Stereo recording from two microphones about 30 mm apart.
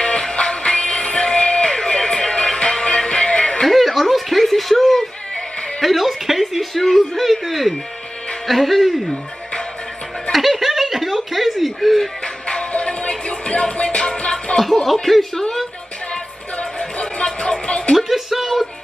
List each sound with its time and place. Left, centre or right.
0.0 s music: left
1.8 s music: left
2.6 s music: left
3.6 s music: centre
4.1 s a sound: centre
7.0 s speech: centre
10.3 s speech: centre
12.4 s music: left
14.9 s speech: centre
16.5 s music: left
17.9 s speech: centre